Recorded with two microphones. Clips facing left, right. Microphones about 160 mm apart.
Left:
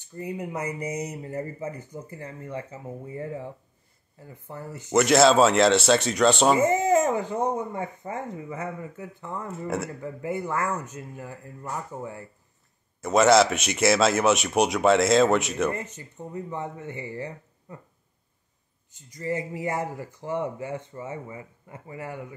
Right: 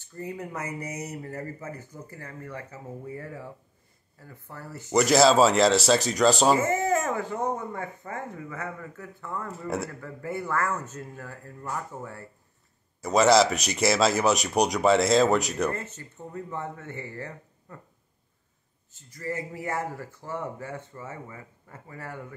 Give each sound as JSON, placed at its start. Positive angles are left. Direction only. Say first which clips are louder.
{"t": 0.0, "sound": "speech", "louder": "left 3 dB", "side_deg": 15}
{"t": 4.9, "sound": "speech", "louder": "left 1 dB", "side_deg": 0}
{"t": 6.6, "sound": "speech", "louder": "left 4 dB", "side_deg": 20}
{"t": 9.5, "sound": "speech", "louder": "left 2 dB", "side_deg": 0}
{"t": 9.8, "sound": "speech", "louder": "left 4 dB", "side_deg": 20}
{"t": 13.0, "sound": "speech", "louder": "left 1 dB", "side_deg": 0}
{"t": 15.7, "sound": "speech", "louder": "left 1 dB", "side_deg": 15}
{"t": 18.9, "sound": "speech", "louder": "left 4 dB", "side_deg": 15}